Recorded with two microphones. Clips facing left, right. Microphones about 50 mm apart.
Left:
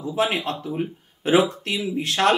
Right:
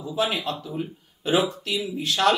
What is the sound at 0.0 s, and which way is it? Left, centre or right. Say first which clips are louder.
Speech: left 3 dB; left.